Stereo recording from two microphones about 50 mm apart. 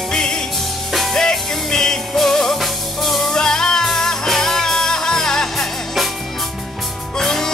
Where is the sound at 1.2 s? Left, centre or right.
Centre.